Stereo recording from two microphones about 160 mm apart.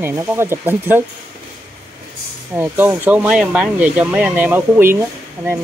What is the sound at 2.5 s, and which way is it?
Speech, 10° right (ahead or behind).